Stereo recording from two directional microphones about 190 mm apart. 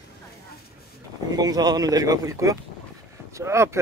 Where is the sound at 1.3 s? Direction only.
20° right (ahead or behind).